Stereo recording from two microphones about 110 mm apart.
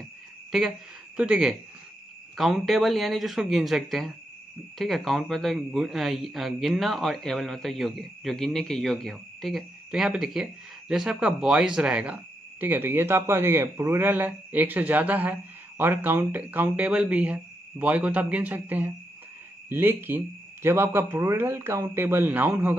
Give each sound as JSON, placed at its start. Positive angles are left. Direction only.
{"t": 0.5, "sound": "a man's voice", "side_deg": -5}